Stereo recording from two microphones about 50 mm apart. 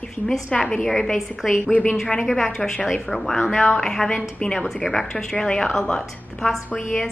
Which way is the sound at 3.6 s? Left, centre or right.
Centre.